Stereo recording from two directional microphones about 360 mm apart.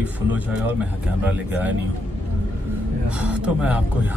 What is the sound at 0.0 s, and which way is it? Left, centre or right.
Speech, centre.